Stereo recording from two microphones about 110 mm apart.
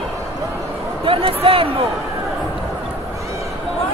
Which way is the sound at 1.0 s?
55° right (ahead or behind).